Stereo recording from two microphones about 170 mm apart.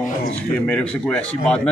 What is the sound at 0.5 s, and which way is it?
Speech, 10° left (ahead or behind).